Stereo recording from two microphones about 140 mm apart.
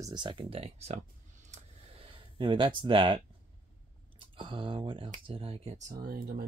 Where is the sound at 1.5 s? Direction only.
45° right (ahead or behind).